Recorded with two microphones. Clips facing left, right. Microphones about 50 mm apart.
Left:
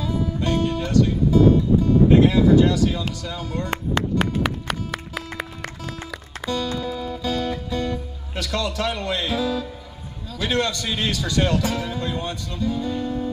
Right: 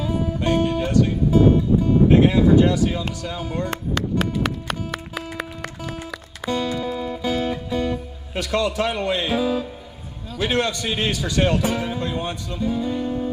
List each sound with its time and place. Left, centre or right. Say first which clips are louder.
0.0 s music: right 1 dB; right
2.0 s speech: even; right
3.7 s music: left 4 dB; left
4.6 s music: even; centre
6.4 s music: right 2 dB; right
10.4 s speech: right 1 dB; right